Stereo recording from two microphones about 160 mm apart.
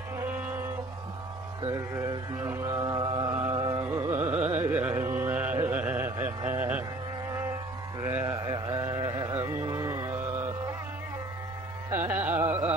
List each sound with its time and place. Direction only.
0.2 s music: 10° right (ahead or behind)
1.6 s mantra: 20° right (ahead or behind)
4.5 s music: 15° right (ahead or behind)
8.0 s a sound: 15° right (ahead or behind)
11.9 s carnatic music: 10° right (ahead or behind)